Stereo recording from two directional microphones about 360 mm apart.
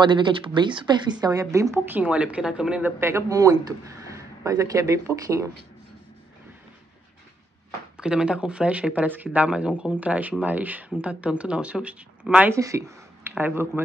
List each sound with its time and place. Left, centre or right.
0.0 s a woman's voice: centre
8.0 s speech: centre